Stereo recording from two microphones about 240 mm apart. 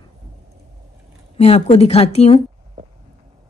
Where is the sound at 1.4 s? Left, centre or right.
Left.